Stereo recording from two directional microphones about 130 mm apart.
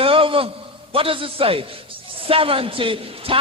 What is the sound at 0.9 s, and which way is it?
A man's voice, 45° right (ahead or behind).